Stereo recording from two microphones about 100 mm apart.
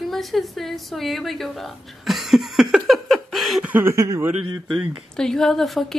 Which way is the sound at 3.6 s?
20° right (ahead or behind).